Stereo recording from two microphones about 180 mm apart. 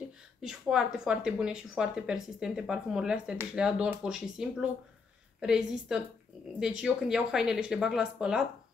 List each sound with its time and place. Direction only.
0.4 s speech: 5° right (ahead or behind)